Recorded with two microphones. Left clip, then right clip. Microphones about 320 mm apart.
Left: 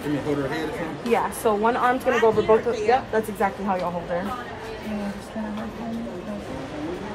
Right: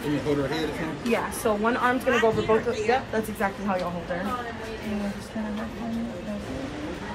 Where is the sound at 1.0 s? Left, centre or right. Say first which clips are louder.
Left 4 dB; left.